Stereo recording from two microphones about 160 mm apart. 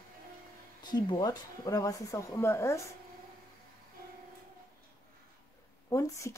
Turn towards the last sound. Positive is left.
turn(degrees=20)  # may be behind; listen again after turning